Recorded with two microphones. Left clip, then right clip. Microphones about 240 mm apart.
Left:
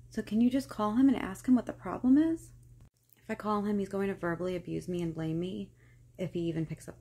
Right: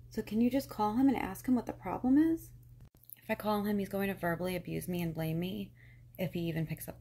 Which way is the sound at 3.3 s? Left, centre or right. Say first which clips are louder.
Left 1 dB; centre.